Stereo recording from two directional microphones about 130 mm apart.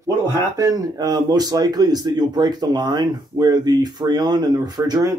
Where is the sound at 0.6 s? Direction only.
30° right (ahead or behind).